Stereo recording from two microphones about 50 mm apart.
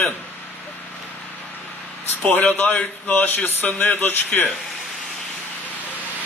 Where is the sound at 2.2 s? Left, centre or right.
Left.